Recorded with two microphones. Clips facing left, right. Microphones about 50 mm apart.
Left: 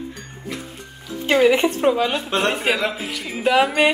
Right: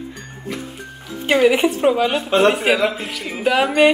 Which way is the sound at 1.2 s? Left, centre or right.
Centre.